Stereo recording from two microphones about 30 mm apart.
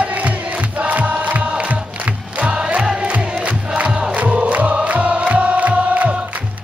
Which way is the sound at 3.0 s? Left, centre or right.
Right.